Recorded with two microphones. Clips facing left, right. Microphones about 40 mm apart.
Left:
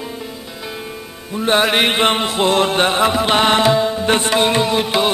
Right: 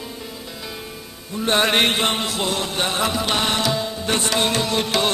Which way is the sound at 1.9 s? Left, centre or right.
Left.